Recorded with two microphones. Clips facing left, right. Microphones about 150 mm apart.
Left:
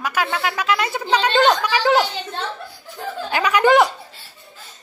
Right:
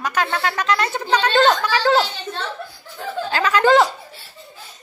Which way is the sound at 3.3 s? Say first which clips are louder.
Even; 15° left (ahead or behind).